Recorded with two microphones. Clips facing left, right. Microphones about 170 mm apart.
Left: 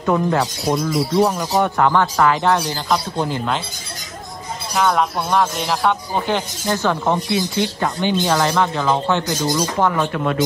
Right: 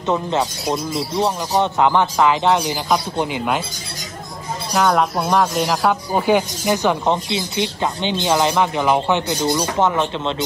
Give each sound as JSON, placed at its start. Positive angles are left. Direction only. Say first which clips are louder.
{"t": 0.0, "sound": "speech", "louder": "left 2 dB", "side_deg": -20}
{"t": 4.7, "sound": "speech", "louder": "right 1 dB", "side_deg": 0}